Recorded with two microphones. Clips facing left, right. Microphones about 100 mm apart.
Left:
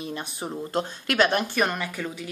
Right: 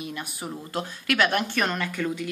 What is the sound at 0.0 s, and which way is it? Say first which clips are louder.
Speech: left 2 dB; 30° left (ahead or behind).